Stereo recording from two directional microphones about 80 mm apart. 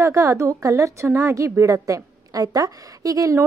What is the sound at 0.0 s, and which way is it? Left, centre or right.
A woman's voice, right.